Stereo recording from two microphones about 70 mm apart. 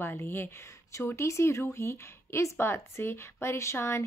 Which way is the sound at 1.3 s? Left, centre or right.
Left.